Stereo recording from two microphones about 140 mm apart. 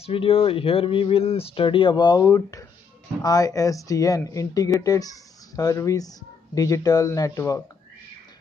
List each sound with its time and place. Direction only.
0.0 s speech: 40° left (ahead or behind); by 7.6 s 20° left (ahead or behind)